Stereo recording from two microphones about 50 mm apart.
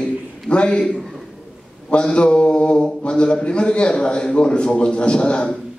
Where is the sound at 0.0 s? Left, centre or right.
Left.